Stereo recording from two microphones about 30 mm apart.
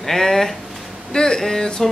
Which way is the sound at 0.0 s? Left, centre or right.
Centre.